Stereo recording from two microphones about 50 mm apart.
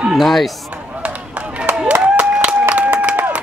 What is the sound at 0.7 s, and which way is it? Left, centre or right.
Run, right.